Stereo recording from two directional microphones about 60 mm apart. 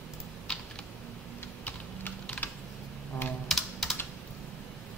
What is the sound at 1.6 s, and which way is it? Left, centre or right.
Typing, left.